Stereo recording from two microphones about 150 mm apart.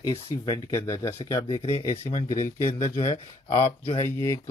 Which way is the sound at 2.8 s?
35° left (ahead or behind).